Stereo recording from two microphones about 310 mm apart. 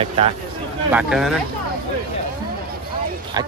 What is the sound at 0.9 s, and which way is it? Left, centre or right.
Speech, centre.